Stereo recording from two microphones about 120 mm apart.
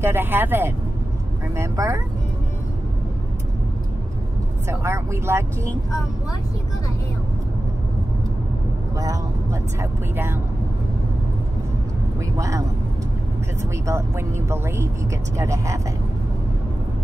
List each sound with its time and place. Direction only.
0.0 s speech: 20° right (ahead or behind)
4.6 s speech: 25° right (ahead or behind)
8.9 s speech: 30° right (ahead or behind)
12.4 s speech: 25° right (ahead or behind)